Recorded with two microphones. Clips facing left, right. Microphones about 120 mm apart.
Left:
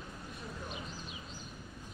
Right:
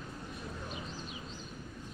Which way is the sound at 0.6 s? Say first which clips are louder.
Right 1 dB; centre (ahead or behind).